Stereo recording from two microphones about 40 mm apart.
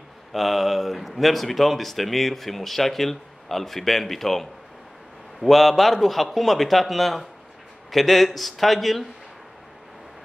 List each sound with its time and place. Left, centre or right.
0.3 s speech: centre